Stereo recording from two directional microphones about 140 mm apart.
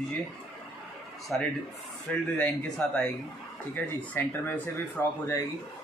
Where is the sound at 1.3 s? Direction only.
5° left (ahead or behind).